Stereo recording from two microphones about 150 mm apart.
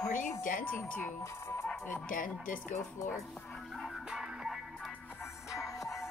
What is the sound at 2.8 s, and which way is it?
Music, 20° left (ahead or behind).